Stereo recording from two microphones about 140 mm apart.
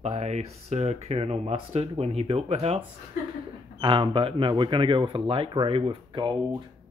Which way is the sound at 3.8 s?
40° right (ahead or behind).